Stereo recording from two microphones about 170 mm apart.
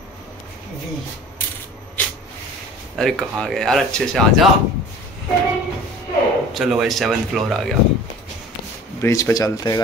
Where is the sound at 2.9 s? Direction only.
5° left (ahead or behind).